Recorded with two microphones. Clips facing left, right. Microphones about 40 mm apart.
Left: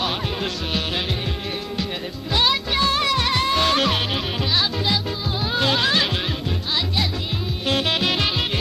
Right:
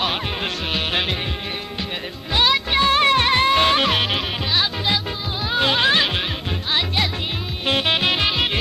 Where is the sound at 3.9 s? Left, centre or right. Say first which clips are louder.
Right 2 dB; centre.